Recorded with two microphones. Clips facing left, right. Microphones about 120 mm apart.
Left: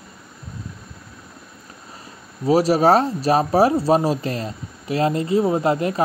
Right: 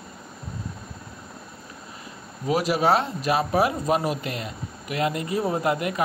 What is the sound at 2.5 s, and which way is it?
Speech, 35° left (ahead or behind).